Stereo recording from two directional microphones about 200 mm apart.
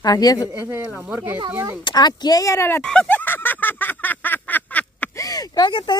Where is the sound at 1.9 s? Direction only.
20° left (ahead or behind).